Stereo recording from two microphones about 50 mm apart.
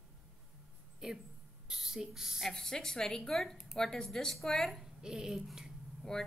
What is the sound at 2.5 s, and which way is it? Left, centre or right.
Speech, centre.